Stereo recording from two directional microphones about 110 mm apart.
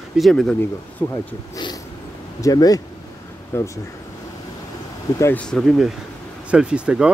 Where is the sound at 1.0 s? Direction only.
20° left (ahead or behind).